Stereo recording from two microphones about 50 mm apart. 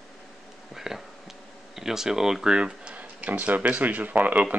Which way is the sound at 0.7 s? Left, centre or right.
Centre.